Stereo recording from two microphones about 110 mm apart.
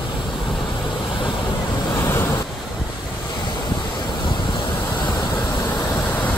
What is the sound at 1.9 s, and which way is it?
Waves, 25° left (ahead or behind).